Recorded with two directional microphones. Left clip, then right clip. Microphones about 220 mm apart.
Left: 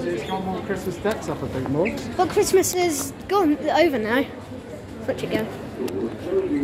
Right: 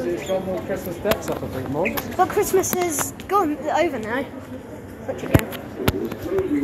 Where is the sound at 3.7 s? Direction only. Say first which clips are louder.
Left 2 dB; 30° left (ahead or behind).